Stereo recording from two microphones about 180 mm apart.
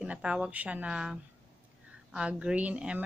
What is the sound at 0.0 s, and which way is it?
Speech, 5° right (ahead or behind).